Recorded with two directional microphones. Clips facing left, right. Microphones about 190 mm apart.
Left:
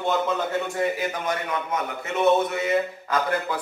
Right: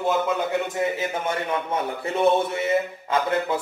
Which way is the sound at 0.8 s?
25° right (ahead or behind).